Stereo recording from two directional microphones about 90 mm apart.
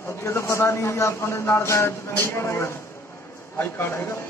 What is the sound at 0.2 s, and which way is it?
A man's voice, 30° left (ahead or behind).